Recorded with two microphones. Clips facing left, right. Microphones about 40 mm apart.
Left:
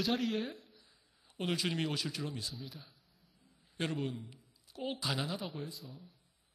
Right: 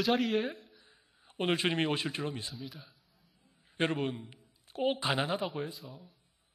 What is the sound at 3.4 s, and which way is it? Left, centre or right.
A man's voice, right.